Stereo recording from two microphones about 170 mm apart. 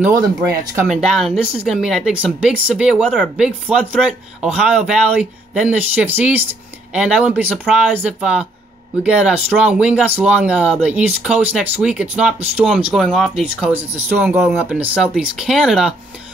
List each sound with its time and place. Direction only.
0.2 s speech: 20° right (ahead or behind)
0.8 s speech: centre (ahead or behind)
13.6 s speech: 10° right (ahead or behind)